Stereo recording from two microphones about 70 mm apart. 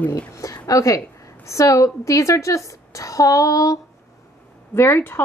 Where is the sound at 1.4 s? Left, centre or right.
Left.